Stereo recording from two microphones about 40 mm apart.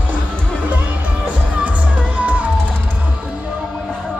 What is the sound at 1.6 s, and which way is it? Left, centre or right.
Music, right.